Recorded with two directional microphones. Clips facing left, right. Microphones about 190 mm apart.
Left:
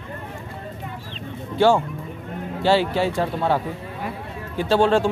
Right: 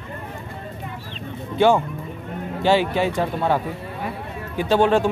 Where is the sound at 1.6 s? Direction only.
20° right (ahead or behind).